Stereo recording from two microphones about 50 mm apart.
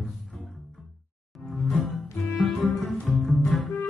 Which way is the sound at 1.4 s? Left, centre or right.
Centre.